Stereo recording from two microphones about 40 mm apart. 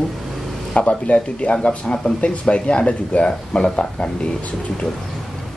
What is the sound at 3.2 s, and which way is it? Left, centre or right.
Speech, centre.